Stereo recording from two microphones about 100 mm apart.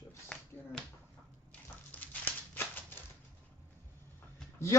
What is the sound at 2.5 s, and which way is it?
Typewriter, 20° left (ahead or behind).